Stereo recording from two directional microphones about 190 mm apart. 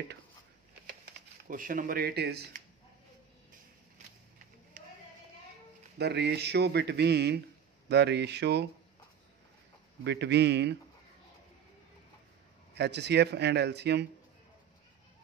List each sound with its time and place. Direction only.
1.5 s speech: 45° right (ahead or behind)
5.9 s speech: 60° right (ahead or behind)
10.0 s speech: 65° right (ahead or behind)
12.7 s speech: 65° right (ahead or behind)